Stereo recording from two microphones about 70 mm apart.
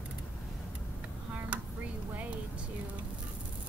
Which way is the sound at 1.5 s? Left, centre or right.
Centre.